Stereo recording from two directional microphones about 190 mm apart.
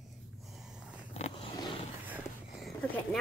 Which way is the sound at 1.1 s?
30° left (ahead or behind).